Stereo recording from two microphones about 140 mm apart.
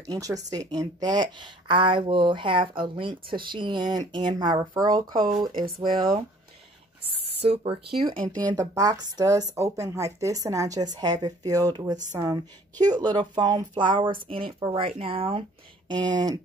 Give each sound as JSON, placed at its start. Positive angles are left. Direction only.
{"t": 0.0, "sound": "speech", "side_deg": -25}
{"t": 4.9, "sound": "speech", "side_deg": -85}
{"t": 5.6, "sound": "speech", "side_deg": -35}
{"t": 7.4, "sound": "speech", "side_deg": -40}
{"t": 8.5, "sound": "speech", "side_deg": -25}
{"t": 15.9, "sound": "speech", "side_deg": -30}